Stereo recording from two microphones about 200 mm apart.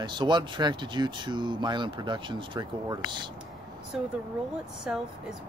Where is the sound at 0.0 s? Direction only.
25° right (ahead or behind).